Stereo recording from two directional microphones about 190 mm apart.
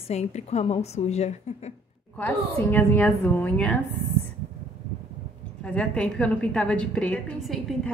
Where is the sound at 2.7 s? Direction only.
10° left (ahead or behind).